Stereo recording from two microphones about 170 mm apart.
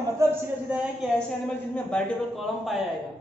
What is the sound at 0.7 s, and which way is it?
Speech, 5° right (ahead or behind).